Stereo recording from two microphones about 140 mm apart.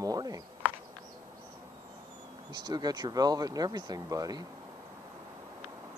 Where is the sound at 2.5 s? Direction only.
30° right (ahead or behind).